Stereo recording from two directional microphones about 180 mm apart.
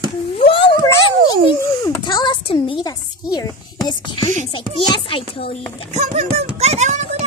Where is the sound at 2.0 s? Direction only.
25° left (ahead or behind).